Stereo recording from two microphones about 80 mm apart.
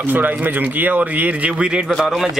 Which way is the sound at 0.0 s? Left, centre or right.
Right.